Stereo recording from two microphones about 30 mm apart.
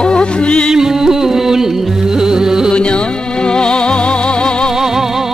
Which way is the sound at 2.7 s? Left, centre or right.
Left.